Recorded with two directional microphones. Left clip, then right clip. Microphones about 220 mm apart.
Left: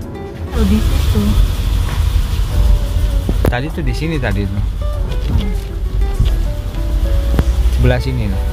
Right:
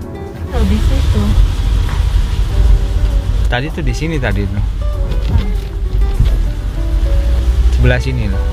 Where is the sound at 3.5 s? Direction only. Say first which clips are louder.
Right 2 dB; centre (ahead or behind).